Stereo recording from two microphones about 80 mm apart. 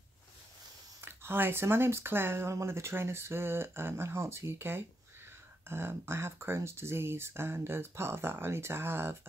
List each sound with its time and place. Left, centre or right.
1.0 s speech: right